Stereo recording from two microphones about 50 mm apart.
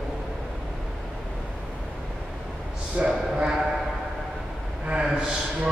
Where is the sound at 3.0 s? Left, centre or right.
Centre.